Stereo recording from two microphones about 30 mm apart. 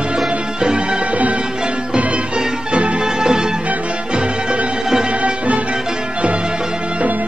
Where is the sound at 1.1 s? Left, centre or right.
Right.